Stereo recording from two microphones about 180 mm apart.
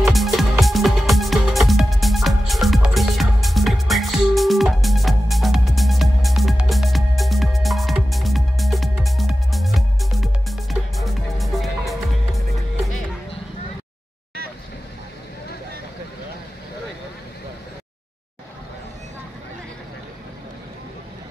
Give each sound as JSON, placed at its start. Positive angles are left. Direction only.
{"t": 0.0, "sound": "music", "side_deg": 0}